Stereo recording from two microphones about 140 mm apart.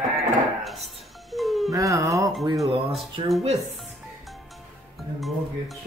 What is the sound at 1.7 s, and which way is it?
Speech, 25° right (ahead or behind).